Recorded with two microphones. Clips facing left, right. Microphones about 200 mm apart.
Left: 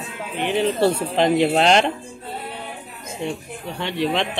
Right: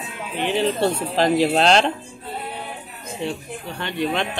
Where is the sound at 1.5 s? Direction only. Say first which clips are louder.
Even; 15° left (ahead or behind).